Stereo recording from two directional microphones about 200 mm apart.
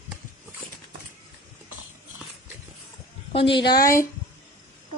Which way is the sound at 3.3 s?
25° left (ahead or behind).